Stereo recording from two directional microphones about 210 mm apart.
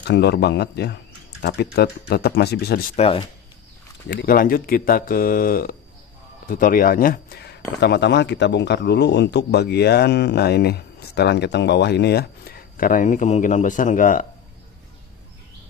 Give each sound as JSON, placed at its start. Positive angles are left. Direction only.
{"t": 0.0, "sound": "a man's voice", "side_deg": 55}
{"t": 3.0, "sound": "speech", "side_deg": 30}
{"t": 4.1, "sound": "a man's voice", "side_deg": 45}